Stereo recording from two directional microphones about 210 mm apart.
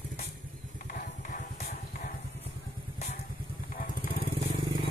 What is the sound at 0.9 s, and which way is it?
Vehicle, 40° left (ahead or behind).